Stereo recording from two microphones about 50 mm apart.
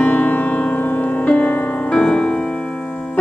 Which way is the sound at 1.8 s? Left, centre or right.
Left.